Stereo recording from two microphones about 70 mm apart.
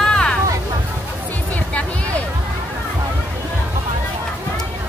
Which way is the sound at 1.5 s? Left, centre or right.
Left.